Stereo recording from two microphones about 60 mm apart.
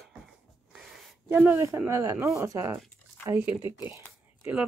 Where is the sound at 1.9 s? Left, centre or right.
Right.